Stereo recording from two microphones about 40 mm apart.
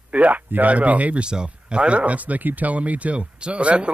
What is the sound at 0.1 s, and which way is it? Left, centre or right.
Speech, right.